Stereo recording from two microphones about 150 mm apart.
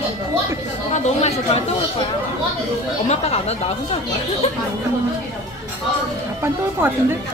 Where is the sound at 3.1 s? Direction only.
45° left (ahead or behind).